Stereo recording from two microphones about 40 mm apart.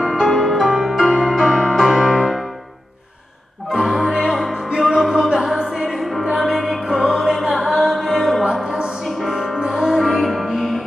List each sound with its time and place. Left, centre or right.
0.2 s music: centre
2.1 s music: centre
3.7 s music: centre
5.9 s music: centre
8.5 s music: centre